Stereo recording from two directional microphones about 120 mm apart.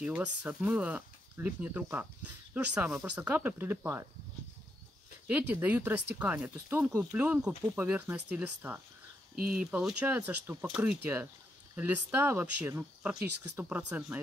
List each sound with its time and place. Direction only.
0.0 s speech: 10° right (ahead or behind)
5.2 s speech: 15° right (ahead or behind)
7.2 s speech: 10° right (ahead or behind)